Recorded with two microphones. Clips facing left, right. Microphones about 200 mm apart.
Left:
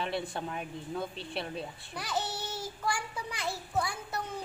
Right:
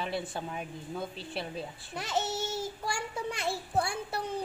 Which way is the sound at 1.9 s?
25° right (ahead or behind).